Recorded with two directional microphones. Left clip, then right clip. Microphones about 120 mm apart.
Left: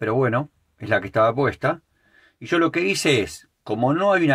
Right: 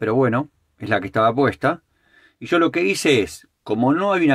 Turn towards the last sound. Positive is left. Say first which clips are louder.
# right 1 dB
turn(degrees=-25)  # may be behind; listen again after turning